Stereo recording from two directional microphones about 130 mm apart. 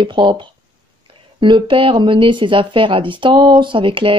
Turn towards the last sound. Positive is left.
turn(degrees=-40)  # may be behind; listen again after turning